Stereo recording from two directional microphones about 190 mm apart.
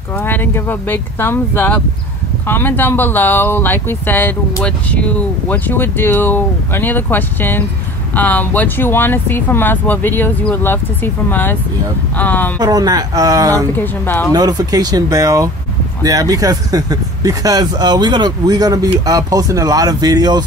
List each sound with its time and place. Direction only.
0.2 s speech: 10° left (ahead or behind)
12.5 s speech: 20° right (ahead or behind)
13.7 s speech: 10° left (ahead or behind)
14.3 s speech: 20° right (ahead or behind)